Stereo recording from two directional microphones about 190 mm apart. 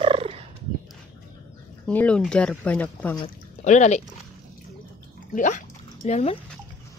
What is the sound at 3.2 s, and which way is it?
Speech, 40° left (ahead or behind).